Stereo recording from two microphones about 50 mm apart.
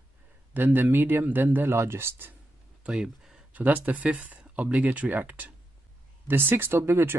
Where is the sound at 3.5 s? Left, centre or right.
Right.